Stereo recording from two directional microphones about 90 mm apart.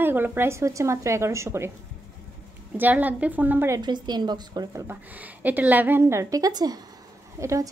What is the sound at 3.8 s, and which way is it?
A woman's voice, 55° right (ahead or behind).